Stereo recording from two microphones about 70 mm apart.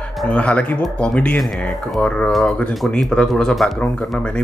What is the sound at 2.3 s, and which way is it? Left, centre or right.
Speech, centre.